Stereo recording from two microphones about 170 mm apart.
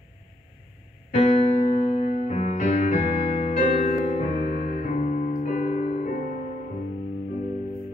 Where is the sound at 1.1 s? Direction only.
40° left (ahead or behind).